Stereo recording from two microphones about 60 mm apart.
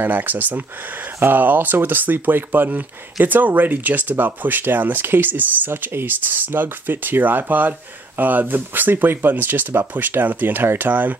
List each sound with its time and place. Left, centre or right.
0.0 s speech: right